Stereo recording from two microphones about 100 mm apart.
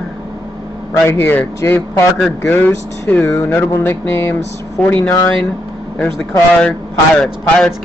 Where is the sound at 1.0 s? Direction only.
20° left (ahead or behind).